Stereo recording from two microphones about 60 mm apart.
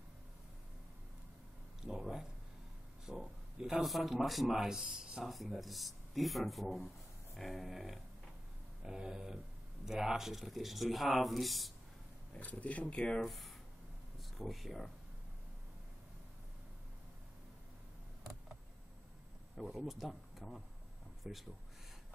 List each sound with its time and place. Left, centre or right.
1.8 s speech: centre
5.3 s speech: centre
8.8 s a sound: centre
9.8 s speech: centre
12.4 s speech: left
13.2 s speech: centre
19.7 s speech: centre